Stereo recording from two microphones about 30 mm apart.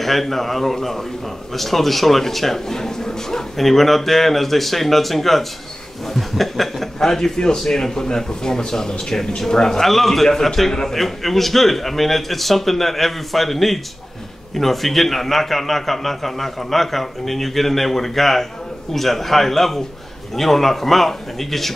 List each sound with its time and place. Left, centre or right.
0.0 s a man's voice: centre
7.3 s a man's voice: left